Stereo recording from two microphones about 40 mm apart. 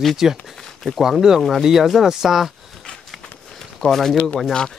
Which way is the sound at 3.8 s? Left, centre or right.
Centre.